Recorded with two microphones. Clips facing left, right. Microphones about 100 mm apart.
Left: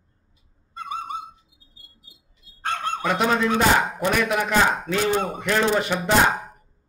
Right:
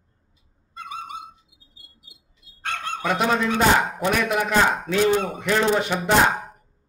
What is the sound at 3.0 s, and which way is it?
A man's voice, centre (ahead or behind).